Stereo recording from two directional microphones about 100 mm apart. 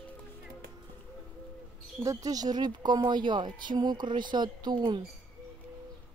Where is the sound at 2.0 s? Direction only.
35° right (ahead or behind).